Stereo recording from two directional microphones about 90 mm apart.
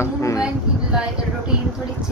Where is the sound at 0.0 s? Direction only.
35° left (ahead or behind).